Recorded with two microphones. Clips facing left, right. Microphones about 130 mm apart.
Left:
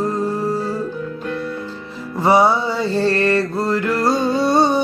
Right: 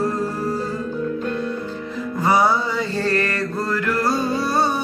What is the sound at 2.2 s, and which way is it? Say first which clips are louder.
Mantra: left 4 dB; 25° left (ahead or behind).